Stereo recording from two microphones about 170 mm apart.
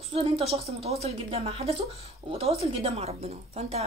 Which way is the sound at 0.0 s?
35° right (ahead or behind).